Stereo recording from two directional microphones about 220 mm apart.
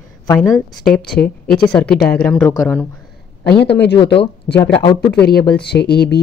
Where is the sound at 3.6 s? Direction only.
50° left (ahead or behind).